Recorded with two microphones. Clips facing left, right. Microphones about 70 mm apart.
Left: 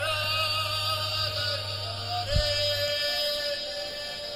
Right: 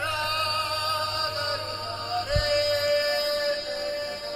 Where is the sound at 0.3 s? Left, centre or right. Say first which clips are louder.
Right 3 dB; right.